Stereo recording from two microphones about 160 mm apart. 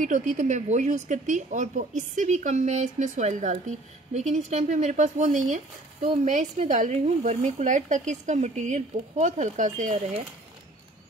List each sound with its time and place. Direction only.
0.0 s speech: 50° right (ahead or behind)